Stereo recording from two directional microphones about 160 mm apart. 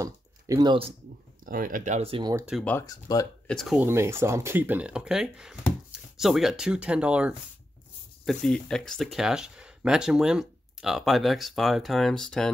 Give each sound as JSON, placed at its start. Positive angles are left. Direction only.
{"t": 0.0, "sound": "speech", "side_deg": -20}
{"t": 1.4, "sound": "speech", "side_deg": -60}
{"t": 2.0, "sound": "speech", "side_deg": -35}
{"t": 2.8, "sound": "speech", "side_deg": 25}
{"t": 3.4, "sound": "speech", "side_deg": 0}
{"t": 3.8, "sound": "speech", "side_deg": -15}
{"t": 8.3, "sound": "speech", "side_deg": 5}